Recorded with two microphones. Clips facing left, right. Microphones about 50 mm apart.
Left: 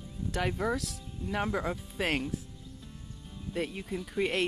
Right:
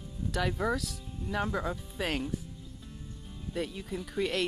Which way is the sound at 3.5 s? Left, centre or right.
Left.